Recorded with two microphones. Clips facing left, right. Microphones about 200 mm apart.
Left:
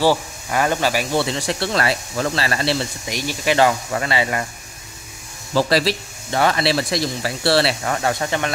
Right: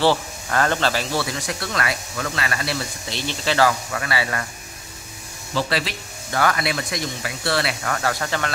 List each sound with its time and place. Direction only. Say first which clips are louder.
0.0 s speech: left 1 dB; 10° left (ahead or behind)
1.2 s speech: left 5 dB; 30° left (ahead or behind)
3.1 s speech: left 3 dB; 15° left (ahead or behind)
5.5 s speech: left 6 dB; 40° left (ahead or behind)
6.3 s speech: left 4 dB; 25° left (ahead or behind)